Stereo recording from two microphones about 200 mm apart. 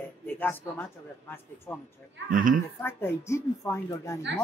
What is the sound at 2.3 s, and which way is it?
Speech, 40° right (ahead or behind).